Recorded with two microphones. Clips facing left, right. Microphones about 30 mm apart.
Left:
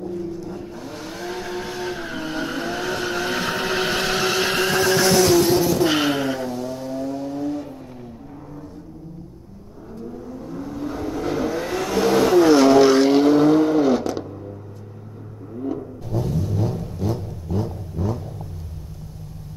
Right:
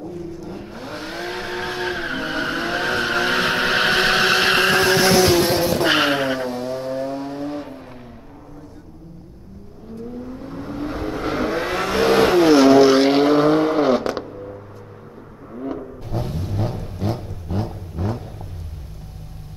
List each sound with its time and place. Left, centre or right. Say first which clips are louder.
0.5 s vehicle: even; right
4.9 s vehicle: right 1 dB; right
10.3 s vehicle: right 1 dB; right
12.4 s vehicle: right 3 dB; right
13.0 s vehicle: even; right
15.5 s vehicle: left 1 dB; right